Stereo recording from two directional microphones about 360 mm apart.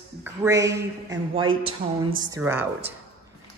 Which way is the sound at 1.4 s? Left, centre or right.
Right.